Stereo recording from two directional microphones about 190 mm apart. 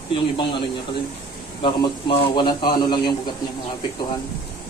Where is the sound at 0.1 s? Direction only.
25° left (ahead or behind).